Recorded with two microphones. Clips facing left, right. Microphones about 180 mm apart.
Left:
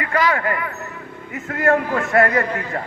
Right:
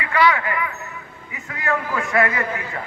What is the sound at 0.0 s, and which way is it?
Speech, 40° left (ahead or behind).